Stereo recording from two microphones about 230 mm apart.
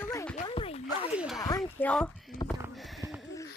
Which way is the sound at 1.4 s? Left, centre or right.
Centre.